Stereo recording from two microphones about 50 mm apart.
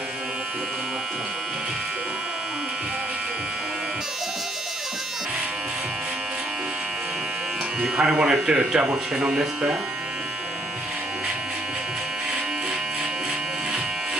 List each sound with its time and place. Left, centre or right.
7.8 s speech: centre
8.5 s speech: right